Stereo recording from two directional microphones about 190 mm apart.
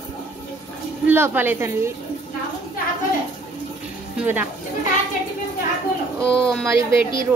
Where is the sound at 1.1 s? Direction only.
10° right (ahead or behind).